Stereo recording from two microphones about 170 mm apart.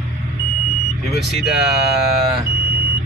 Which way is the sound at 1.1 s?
Centre (ahead or behind).